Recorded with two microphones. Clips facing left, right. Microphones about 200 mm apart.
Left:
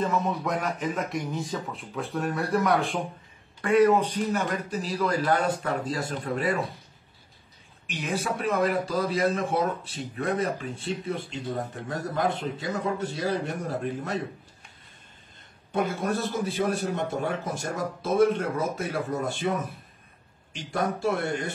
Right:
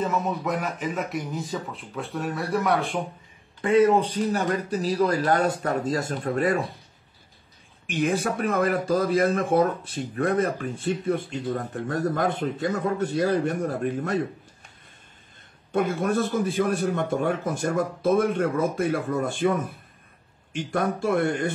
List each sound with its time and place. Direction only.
0.0 s speech: 5° right (ahead or behind)
3.6 s speech: 25° right (ahead or behind)
4.3 s speech: 35° right (ahead or behind)
7.8 s speech: 50° right (ahead or behind)
15.7 s speech: 55° right (ahead or behind)
20.5 s speech: 55° right (ahead or behind)